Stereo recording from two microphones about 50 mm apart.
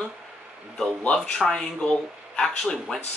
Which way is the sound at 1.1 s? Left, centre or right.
Centre.